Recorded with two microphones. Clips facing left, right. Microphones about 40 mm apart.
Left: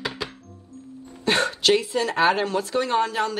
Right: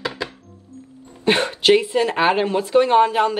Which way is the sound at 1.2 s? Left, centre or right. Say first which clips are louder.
Right 4 dB; right.